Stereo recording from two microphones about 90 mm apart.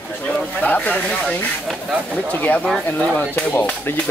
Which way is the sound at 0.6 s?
15° left (ahead or behind).